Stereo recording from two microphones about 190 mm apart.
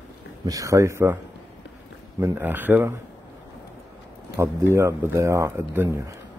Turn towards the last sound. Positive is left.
turn(degrees=-15)  # may be behind; listen again after turning